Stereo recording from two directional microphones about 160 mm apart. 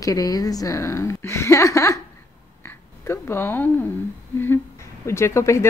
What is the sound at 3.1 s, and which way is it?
Speech, 15° left (ahead or behind).